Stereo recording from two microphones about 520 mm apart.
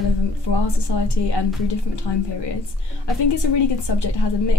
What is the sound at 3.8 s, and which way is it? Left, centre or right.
Speech, left.